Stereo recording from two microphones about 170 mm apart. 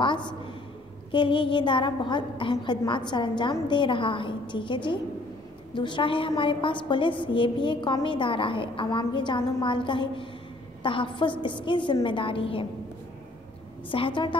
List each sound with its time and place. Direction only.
0.0 s a woman's voice: 30° left (ahead or behind)
13.8 s a woman's voice: 30° left (ahead or behind)